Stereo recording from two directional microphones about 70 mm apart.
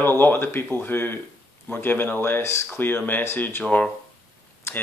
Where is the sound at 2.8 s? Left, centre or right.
Left.